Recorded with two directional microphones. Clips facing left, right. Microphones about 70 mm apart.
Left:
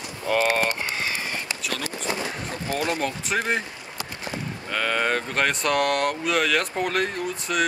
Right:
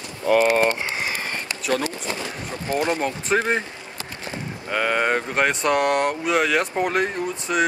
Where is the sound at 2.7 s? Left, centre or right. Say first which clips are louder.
Right 4 dB; right.